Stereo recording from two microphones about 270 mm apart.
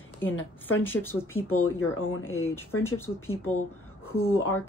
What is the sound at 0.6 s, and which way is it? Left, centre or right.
Speech, centre.